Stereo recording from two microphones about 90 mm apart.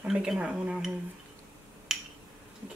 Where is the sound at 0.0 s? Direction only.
5° right (ahead or behind).